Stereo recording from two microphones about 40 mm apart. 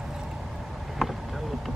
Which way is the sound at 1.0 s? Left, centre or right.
Centre.